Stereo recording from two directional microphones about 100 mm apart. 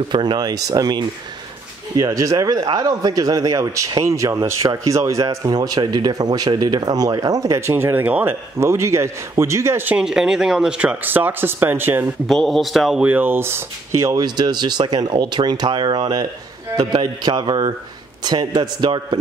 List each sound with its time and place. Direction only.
0.1 s speech: 45° right (ahead or behind)
7.6 s speech: 25° right (ahead or behind)
9.9 s speech: 5° right (ahead or behind); by 12.1 s 20° right (ahead or behind)
12.3 s a man's voice: centre (ahead or behind)
13.0 s speech: 15° right (ahead or behind)
14.2 s speech: 45° right (ahead or behind)